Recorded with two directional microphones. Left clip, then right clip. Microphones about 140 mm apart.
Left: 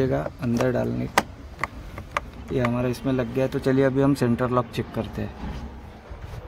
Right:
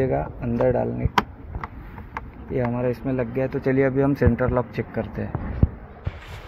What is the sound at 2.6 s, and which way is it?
Speech, 30° left (ahead or behind).